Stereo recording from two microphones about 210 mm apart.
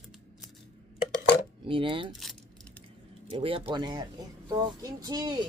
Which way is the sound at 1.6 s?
25° right (ahead or behind).